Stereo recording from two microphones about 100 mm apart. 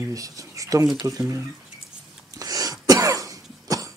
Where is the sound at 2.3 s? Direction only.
40° right (ahead or behind).